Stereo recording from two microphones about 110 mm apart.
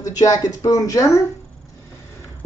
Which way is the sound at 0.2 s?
35° left (ahead or behind).